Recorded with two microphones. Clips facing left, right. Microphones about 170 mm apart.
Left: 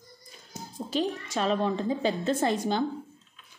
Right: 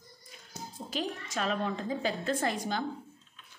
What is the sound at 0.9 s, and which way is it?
A woman's voice, 30° left (ahead or behind).